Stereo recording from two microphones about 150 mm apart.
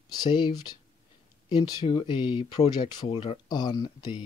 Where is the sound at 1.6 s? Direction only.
30° left (ahead or behind).